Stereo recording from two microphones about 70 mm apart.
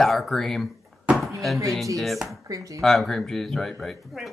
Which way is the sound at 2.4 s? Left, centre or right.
Right.